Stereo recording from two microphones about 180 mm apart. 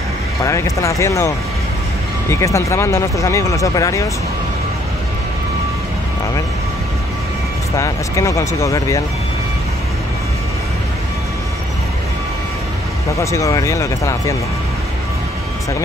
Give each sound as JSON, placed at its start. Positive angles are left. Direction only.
{"t": 0.4, "sound": "speech", "side_deg": 20}
{"t": 7.7, "sound": "speech", "side_deg": 15}
{"t": 13.2, "sound": "speech", "side_deg": 15}